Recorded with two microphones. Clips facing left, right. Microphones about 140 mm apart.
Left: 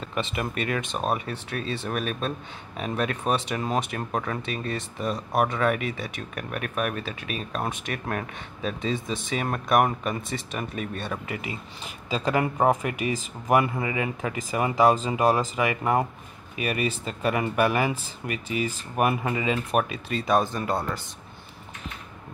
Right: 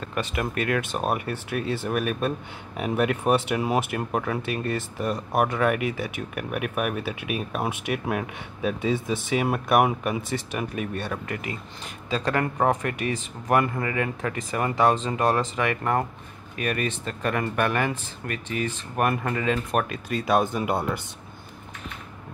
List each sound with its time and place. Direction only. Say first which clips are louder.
0.1 s speech: right 1 dB; centre (ahead or behind)
20.5 s speech: right 2 dB; 20° right (ahead or behind)